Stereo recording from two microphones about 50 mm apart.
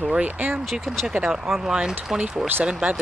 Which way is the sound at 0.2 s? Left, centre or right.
Right.